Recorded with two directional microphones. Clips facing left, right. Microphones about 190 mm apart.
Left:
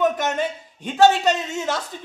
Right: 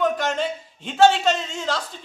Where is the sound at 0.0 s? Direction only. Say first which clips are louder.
Left 1 dB; 20° left (ahead or behind).